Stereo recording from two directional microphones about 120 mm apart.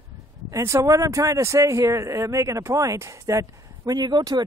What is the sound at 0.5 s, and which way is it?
Speech, 25° right (ahead or behind).